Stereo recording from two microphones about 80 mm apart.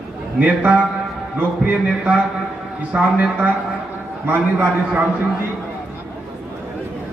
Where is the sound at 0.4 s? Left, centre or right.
Centre.